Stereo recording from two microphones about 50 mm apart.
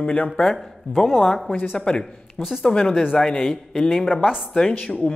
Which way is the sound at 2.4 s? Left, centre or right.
Centre.